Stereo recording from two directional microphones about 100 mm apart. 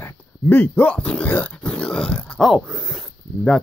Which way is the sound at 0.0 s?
20° left (ahead or behind).